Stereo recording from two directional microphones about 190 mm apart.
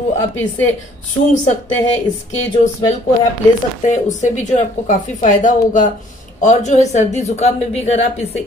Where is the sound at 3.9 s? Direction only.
40° left (ahead or behind).